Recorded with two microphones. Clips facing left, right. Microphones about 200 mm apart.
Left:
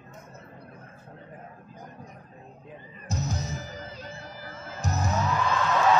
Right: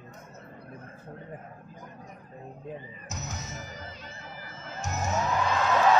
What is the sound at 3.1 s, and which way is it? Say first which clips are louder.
Music: left 8 dB; 35° left (ahead or behind).